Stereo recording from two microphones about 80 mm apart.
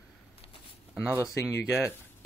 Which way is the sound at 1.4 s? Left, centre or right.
Centre.